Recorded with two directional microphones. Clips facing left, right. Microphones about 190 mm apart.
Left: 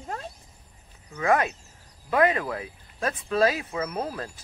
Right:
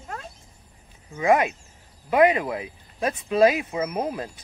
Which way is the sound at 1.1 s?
15° right (ahead or behind).